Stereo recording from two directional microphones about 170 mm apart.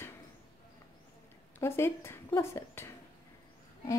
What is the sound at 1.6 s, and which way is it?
A woman's voice, 15° left (ahead or behind).